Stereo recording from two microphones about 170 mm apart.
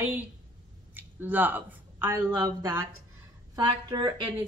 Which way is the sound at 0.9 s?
10° right (ahead or behind).